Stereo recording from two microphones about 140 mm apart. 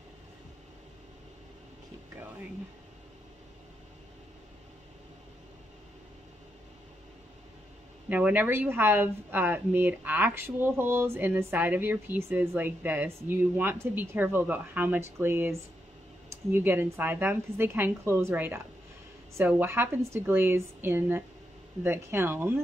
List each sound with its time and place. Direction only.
8.1 s speech: 10° right (ahead or behind)